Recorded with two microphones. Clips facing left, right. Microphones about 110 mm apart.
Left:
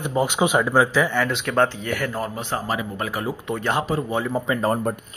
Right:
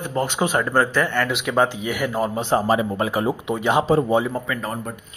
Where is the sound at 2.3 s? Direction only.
25° right (ahead or behind).